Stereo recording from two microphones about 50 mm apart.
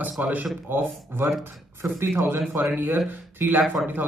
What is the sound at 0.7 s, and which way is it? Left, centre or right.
Speech, right.